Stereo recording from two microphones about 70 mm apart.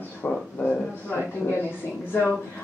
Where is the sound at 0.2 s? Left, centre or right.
Left.